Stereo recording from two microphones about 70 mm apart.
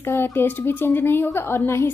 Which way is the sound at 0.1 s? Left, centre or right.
Left.